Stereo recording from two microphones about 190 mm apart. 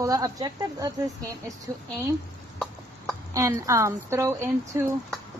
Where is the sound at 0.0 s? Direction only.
20° right (ahead or behind).